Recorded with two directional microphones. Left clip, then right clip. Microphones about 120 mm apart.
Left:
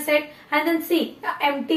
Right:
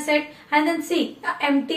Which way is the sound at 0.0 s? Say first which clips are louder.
Left 1 dB; 35° left (ahead or behind).